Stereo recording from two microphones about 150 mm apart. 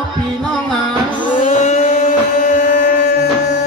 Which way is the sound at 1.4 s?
55° left (ahead or behind).